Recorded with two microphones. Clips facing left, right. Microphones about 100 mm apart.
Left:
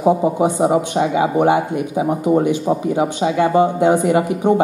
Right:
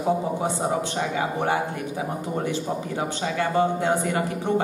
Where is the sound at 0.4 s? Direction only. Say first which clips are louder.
Left 9 dB; 15° left (ahead or behind).